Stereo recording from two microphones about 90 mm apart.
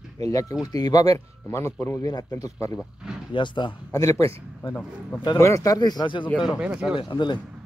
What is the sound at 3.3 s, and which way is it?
Speech, 60° left (ahead or behind).